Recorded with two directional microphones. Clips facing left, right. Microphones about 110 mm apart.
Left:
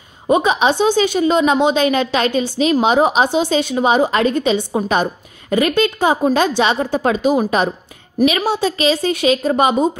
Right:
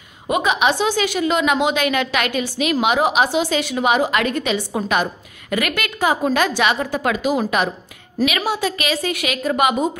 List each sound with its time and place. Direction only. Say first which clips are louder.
0.3 s a woman's voice: left 4 dB; 30° left (ahead or behind)